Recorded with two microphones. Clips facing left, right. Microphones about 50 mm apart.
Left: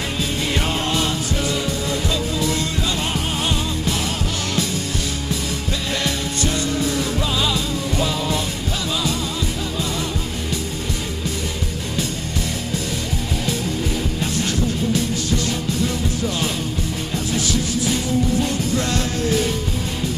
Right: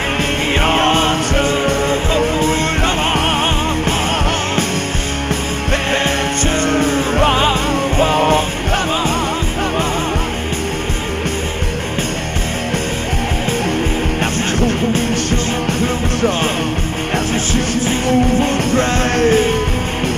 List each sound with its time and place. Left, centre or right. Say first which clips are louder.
0.6 s music: right 10 dB; right
6.0 s music: right 6 dB; right
14.2 s music: right 5 dB; right
17.3 s music: right 5 dB; right